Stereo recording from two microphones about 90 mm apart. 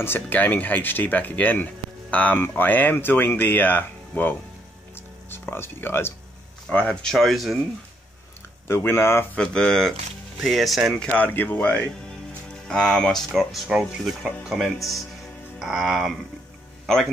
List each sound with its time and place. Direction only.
0.0 s speech: 20° left (ahead or behind)
5.3 s speech: 25° left (ahead or behind)
6.7 s speech: 10° left (ahead or behind)
8.6 s speech: 30° left (ahead or behind)
9.4 s speech: 10° left (ahead or behind)
11.1 s speech: 20° left (ahead or behind); by 17.1 s 5° left (ahead or behind)